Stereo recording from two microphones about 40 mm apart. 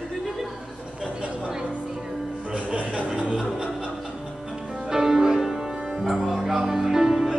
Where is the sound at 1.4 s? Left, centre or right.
Centre.